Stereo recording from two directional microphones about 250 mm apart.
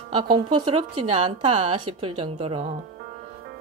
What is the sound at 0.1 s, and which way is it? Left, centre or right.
Speech, centre.